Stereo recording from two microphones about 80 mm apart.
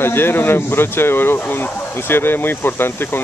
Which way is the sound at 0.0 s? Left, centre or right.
Left.